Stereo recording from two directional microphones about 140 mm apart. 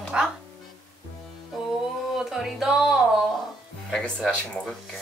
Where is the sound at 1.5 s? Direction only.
Centre (ahead or behind).